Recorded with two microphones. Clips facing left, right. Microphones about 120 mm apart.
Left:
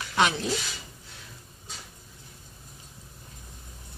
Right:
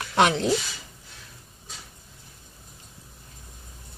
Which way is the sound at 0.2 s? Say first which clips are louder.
Right 4 dB; 60° right (ahead or behind).